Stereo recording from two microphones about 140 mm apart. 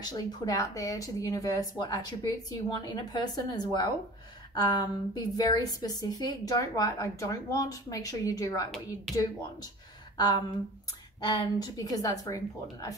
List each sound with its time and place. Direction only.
0.0 s a woman's voice: 25° left (ahead or behind)
10.1 s a woman's voice: 25° left (ahead or behind)